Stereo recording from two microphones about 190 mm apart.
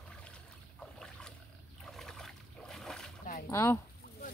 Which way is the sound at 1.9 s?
Centre (ahead or behind).